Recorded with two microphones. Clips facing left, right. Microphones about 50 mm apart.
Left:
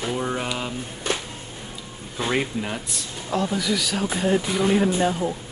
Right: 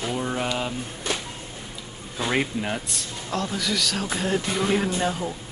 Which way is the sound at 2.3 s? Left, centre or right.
Centre.